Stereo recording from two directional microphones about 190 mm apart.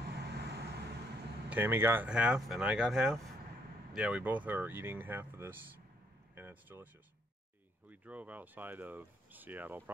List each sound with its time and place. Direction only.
0.0 s vehicle: 60° right (ahead or behind)
1.5 s speech: 10° right (ahead or behind)
7.9 s speech: 10° right (ahead or behind)